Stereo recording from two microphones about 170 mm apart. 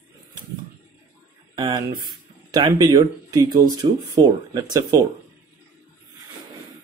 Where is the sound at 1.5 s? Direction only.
25° right (ahead or behind).